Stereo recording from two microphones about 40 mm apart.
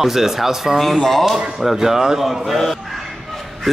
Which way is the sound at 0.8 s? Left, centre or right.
Centre.